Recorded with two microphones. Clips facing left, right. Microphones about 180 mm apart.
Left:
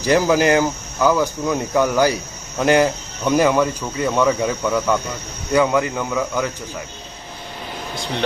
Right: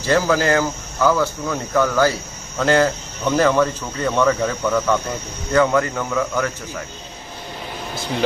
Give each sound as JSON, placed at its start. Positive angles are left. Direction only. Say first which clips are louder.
{"t": 0.0, "sound": "speech", "louder": "left 2 dB", "side_deg": 15}